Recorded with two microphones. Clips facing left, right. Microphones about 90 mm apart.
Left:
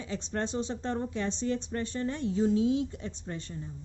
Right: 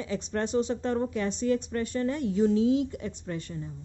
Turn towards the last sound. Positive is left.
turn(degrees=25)  # may be behind; listen again after turning